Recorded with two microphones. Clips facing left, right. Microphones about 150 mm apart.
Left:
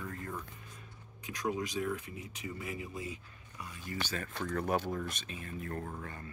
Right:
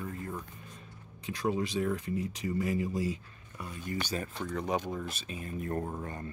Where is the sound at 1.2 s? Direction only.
30° right (ahead or behind).